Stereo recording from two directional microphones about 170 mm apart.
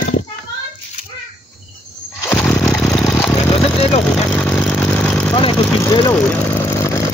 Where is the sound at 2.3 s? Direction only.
5° left (ahead or behind).